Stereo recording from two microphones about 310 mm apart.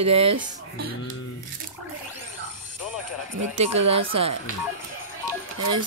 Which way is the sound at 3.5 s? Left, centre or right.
Centre.